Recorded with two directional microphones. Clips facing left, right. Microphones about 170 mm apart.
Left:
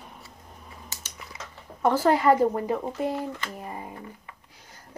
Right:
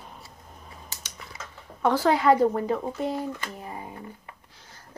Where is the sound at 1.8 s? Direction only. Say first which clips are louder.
Even; 5° left (ahead or behind).